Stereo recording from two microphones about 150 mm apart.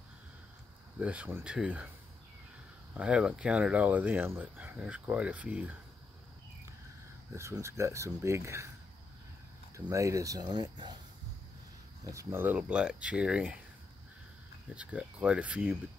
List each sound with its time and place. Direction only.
0.9 s speech: 10° right (ahead or behind)
2.9 s speech: 10° right (ahead or behind)
7.3 s speech: 20° right (ahead or behind)
9.8 s speech: 20° right (ahead or behind)
12.0 s speech: 20° right (ahead or behind)
14.8 s speech: 10° right (ahead or behind)